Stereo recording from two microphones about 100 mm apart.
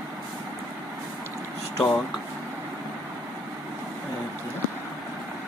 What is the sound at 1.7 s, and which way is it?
Speech, 35° left (ahead or behind).